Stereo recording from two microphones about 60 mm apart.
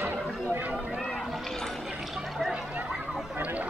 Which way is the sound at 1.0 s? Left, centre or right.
Centre.